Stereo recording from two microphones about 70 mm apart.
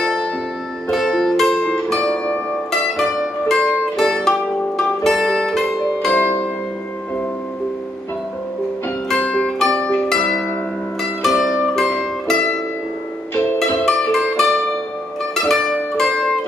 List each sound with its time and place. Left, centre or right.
0.0 s music: centre
2.7 s music: centre
6.1 s zither: left
9.2 s music: centre
11.2 s music: centre
11.6 s music: centre
13.6 s music: centre
14.3 s mandolin: centre
15.3 s music: centre